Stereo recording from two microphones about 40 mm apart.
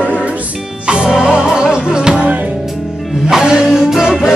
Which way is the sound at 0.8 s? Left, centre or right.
Right.